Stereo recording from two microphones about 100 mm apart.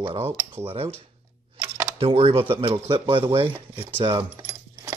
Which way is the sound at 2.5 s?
60° right (ahead or behind).